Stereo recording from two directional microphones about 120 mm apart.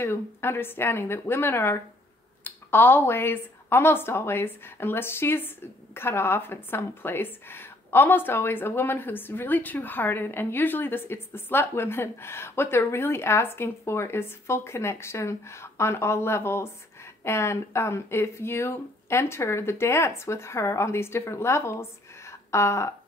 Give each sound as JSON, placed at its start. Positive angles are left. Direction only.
{"t": 0.0, "sound": "speech", "side_deg": 20}